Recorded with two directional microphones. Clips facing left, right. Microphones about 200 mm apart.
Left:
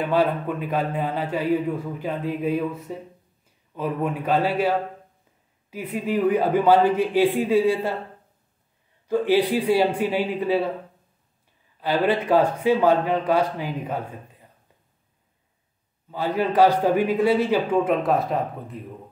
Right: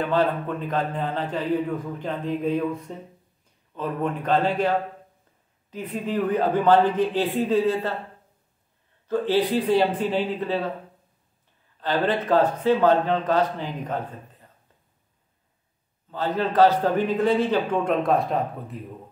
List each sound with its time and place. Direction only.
0.0 s a man's voice: 10° left (ahead or behind)
9.0 s a man's voice: 10° left (ahead or behind)
11.8 s a man's voice: 10° left (ahead or behind)
16.1 s a man's voice: 10° left (ahead or behind)